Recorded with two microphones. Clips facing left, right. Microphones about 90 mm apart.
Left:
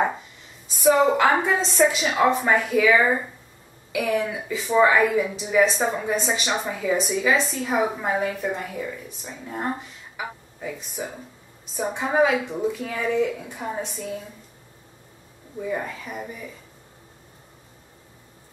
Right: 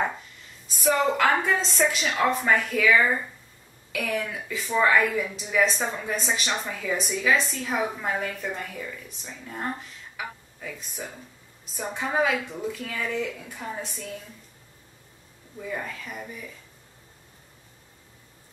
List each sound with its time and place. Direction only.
0.7 s a woman's voice: centre (ahead or behind)
13.8 s a woman's voice: 5° left (ahead or behind)
15.6 s a woman's voice: 10° left (ahead or behind)